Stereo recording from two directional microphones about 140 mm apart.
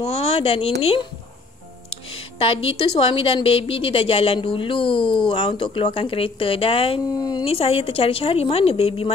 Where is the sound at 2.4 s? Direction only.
40° left (ahead or behind).